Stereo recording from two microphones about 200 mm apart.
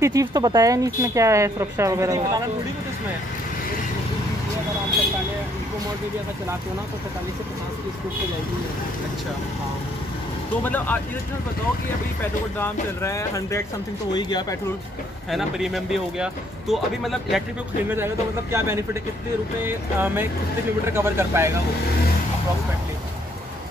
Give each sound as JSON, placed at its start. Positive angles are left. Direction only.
{"t": 0.0, "sound": "speech", "side_deg": -15}
{"t": 10.6, "sound": "speech", "side_deg": 10}
{"t": 12.5, "sound": "speech", "side_deg": 15}
{"t": 15.3, "sound": "speech", "side_deg": 0}
{"t": 17.8, "sound": "speech", "side_deg": -10}